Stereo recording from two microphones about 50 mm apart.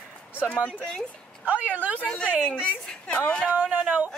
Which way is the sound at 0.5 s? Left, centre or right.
Left.